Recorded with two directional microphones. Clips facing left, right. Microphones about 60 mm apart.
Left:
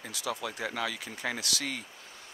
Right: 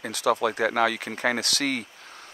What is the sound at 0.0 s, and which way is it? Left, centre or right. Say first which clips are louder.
Speech: right 12 dB; right.